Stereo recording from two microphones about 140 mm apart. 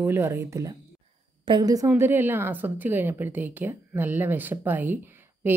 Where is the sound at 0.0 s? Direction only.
20° right (ahead or behind).